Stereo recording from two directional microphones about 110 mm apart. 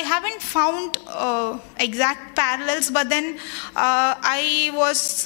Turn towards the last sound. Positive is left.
turn(degrees=15)  # may be behind; listen again after turning